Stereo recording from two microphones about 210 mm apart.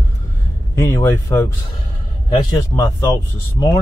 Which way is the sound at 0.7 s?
10° left (ahead or behind).